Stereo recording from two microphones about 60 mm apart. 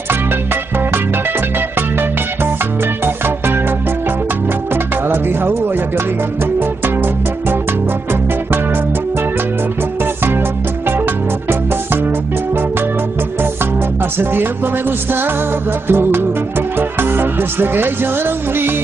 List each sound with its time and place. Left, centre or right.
5.1 s music: right
14.1 s music: right